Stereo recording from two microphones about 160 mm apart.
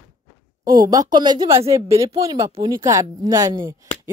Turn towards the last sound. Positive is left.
turn(degrees=-20)  # may be behind; listen again after turning